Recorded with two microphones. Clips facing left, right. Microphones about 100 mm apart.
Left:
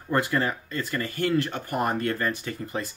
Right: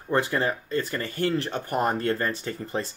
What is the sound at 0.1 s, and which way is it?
Speech, 25° right (ahead or behind).